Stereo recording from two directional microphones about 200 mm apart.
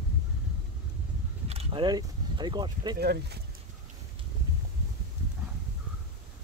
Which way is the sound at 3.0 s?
55° right (ahead or behind).